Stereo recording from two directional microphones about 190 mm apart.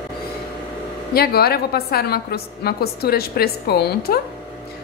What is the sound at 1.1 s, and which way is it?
A woman's voice, 55° left (ahead or behind).